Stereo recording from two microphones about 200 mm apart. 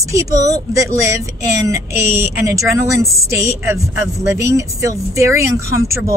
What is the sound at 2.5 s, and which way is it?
Speech, 15° right (ahead or behind).